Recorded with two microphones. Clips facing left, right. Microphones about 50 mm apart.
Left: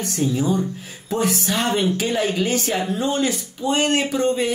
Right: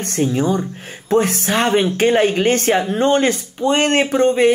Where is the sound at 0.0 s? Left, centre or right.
Right.